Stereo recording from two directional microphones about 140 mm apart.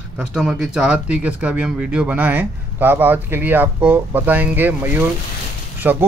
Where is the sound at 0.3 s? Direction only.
5° right (ahead or behind).